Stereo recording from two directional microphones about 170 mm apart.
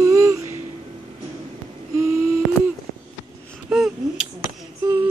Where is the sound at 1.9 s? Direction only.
15° right (ahead or behind).